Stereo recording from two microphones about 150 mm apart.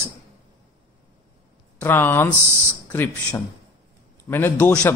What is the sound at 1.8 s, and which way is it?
Speech, 10° left (ahead or behind).